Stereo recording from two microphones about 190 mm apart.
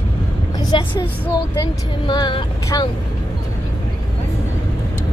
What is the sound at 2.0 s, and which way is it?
Speech, 20° left (ahead or behind).